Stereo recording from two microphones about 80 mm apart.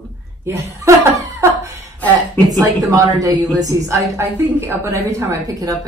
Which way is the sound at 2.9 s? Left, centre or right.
Right.